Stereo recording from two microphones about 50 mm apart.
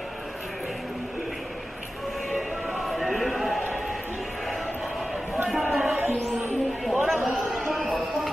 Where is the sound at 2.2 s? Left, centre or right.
Centre.